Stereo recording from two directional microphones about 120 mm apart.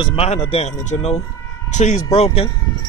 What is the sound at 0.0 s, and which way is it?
Speech, 50° left (ahead or behind).